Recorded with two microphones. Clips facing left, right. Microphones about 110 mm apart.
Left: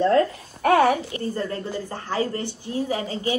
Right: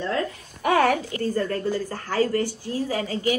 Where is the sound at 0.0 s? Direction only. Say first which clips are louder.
Left 8 dB; 40° left (ahead or behind).